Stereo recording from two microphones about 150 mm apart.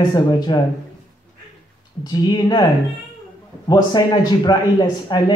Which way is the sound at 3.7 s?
30° left (ahead or behind).